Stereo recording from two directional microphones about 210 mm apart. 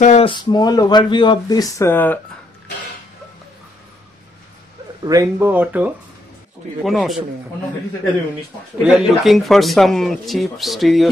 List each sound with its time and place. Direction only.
0.0 s speech: 35° left (ahead or behind)
0.3 s speech: 20° left (ahead or behind)
5.0 s speech: 15° right (ahead or behind); by 7.2 s centre (ahead or behind)
8.8 s speech: 5° right (ahead or behind)